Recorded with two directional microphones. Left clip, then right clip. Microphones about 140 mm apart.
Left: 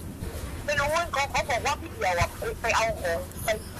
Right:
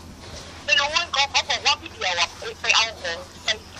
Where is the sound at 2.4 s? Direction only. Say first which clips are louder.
Right 5 dB; 20° right (ahead or behind).